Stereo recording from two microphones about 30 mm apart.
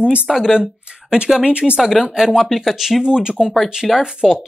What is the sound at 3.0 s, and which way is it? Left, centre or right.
Speech, right.